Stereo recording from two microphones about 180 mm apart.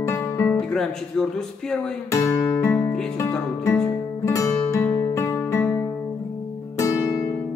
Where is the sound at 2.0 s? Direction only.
15° left (ahead or behind).